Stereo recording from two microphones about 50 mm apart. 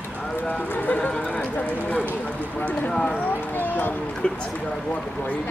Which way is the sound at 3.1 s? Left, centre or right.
Left.